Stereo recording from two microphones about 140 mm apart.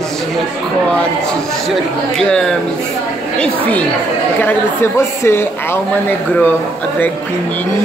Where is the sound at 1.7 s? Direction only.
5° left (ahead or behind).